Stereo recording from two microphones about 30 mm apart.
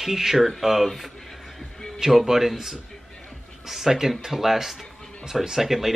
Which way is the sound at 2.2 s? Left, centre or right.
Centre.